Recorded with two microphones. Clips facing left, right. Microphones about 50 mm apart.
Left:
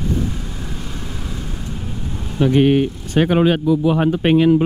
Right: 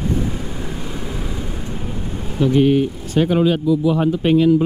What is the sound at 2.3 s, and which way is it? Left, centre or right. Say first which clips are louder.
Speech: left 1 dB; left.